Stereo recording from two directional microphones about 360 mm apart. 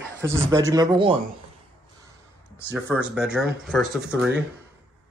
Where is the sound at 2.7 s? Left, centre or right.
Centre.